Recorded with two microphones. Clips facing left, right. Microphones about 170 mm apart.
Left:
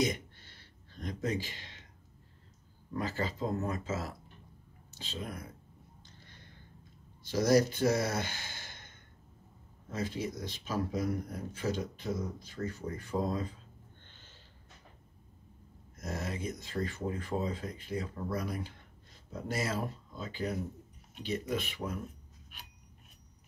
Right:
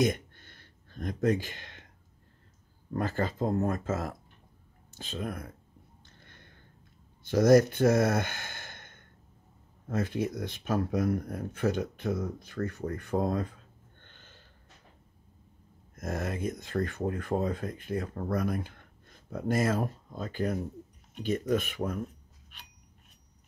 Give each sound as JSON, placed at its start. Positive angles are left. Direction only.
{"t": 0.0, "sound": "a sound", "side_deg": -50}
{"t": 2.9, "sound": "speech", "side_deg": -55}
{"t": 6.0, "sound": "a sound", "side_deg": -55}
{"t": 7.2, "sound": "speech", "side_deg": -55}
{"t": 14.0, "sound": "gasp", "side_deg": -55}
{"t": 16.0, "sound": "speech", "side_deg": -55}